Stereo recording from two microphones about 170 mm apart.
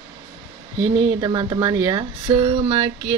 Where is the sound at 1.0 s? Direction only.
25° right (ahead or behind).